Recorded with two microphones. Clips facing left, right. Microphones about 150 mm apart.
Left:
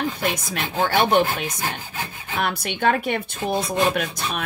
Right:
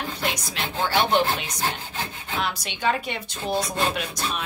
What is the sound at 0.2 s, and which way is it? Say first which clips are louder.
Speech: left 3 dB; 50° left (ahead or behind).